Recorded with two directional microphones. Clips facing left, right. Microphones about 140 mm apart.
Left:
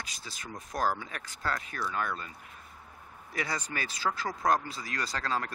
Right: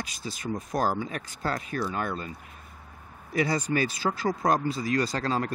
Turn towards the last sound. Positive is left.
turn(degrees=-25)  # may be behind; listen again after turning